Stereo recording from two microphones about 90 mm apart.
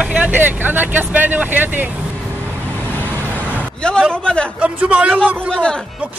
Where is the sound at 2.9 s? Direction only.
20° left (ahead or behind).